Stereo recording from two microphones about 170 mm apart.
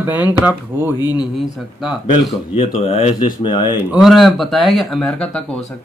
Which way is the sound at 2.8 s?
35° left (ahead or behind).